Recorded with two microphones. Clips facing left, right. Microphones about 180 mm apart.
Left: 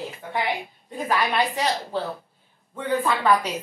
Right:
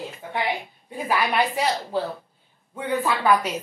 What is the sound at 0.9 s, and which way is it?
Speech, 10° right (ahead or behind).